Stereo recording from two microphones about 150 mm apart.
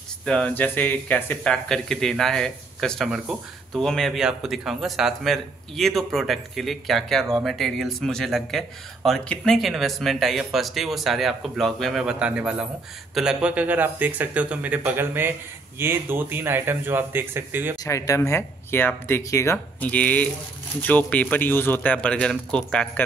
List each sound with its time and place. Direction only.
0.2 s speech: 5° left (ahead or behind); by 17.7 s 15° right (ahead or behind)
17.8 s speech: 20° left (ahead or behind)